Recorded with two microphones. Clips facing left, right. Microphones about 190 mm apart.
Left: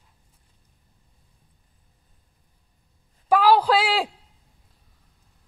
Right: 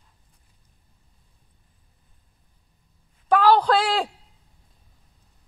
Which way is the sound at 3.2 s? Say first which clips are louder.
Even; 10° left (ahead or behind).